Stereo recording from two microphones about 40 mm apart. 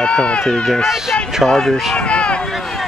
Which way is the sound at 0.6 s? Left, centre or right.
Centre.